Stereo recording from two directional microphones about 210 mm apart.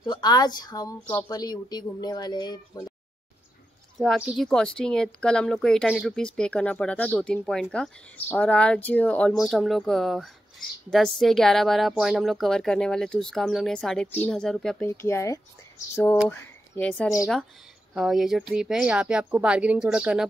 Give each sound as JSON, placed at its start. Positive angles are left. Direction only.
{"t": 0.0, "sound": "speech", "side_deg": 20}
{"t": 4.0, "sound": "speech", "side_deg": 0}
{"t": 14.9, "sound": "speech", "side_deg": 15}